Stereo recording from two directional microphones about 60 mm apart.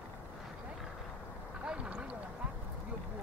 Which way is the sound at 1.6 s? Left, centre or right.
Centre.